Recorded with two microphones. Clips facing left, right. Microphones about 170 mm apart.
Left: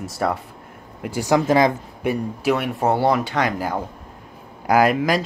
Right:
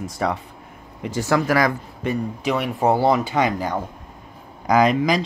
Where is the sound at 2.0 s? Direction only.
5° left (ahead or behind).